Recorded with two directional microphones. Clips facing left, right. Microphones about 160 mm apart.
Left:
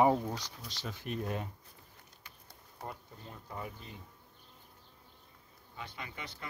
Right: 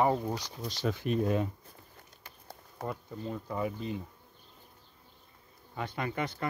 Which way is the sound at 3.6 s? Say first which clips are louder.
Right 11 dB; 90° right.